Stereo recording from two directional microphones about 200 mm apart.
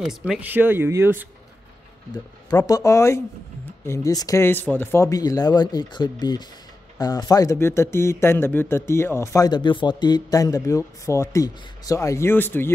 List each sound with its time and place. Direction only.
0.0 s speech: centre (ahead or behind)
2.5 s speech: 15° left (ahead or behind)